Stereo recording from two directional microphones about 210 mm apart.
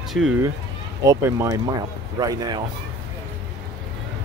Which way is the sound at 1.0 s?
15° right (ahead or behind).